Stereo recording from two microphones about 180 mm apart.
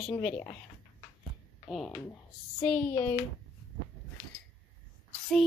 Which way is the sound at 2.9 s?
15° left (ahead or behind).